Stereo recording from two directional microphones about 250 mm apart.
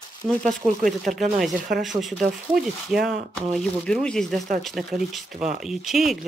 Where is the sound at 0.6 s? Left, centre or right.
Centre.